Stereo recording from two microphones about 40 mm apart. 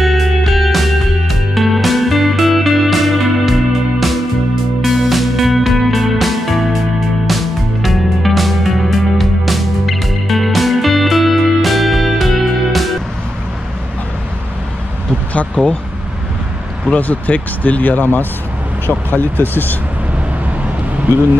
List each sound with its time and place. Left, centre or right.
0.0 s music: centre
16.9 s speech: left